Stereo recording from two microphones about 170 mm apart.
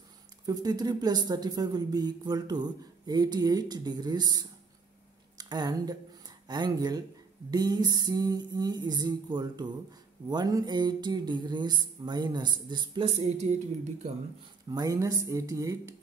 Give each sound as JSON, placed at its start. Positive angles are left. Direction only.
{"t": 0.5, "sound": "speech", "side_deg": -20}
{"t": 14.7, "sound": "speech", "side_deg": -20}